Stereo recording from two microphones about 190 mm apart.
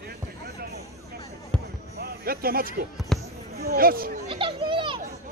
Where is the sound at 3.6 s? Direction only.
50° right (ahead or behind).